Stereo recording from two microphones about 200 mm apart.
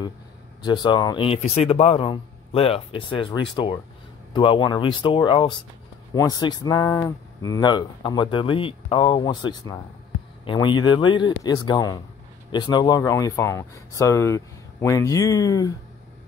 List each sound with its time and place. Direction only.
0.6 s speech: 20° left (ahead or behind)